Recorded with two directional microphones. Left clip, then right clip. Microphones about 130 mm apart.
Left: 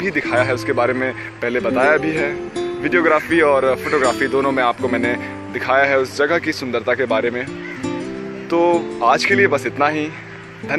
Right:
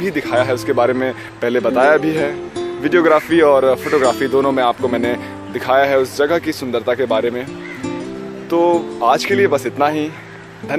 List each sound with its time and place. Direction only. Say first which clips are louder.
0.0 s speech: right 1 dB; 25° right (ahead or behind)
1.4 s speech: right 3 dB; 50° right (ahead or behind); by 7.4 s 20° right (ahead or behind)
8.5 s music: right 1 dB; 15° right (ahead or behind)
9.0 s speech: even; 20° right (ahead or behind)